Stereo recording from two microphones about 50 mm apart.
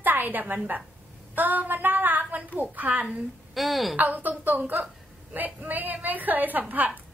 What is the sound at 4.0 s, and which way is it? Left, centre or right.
A woman's voice, right.